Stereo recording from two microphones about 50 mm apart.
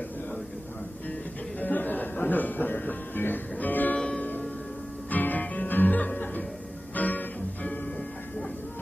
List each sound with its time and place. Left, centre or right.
1.6 s music: left